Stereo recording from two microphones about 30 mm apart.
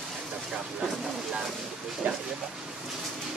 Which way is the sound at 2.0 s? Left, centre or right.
Right.